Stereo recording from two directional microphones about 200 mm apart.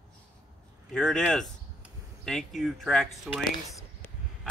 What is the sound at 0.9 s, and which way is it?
Speech, 5° left (ahead or behind).